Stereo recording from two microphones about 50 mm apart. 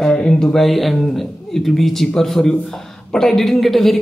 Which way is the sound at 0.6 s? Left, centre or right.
Centre.